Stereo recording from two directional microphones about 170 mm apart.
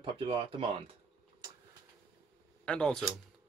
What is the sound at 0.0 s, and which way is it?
Speech, 30° right (ahead or behind).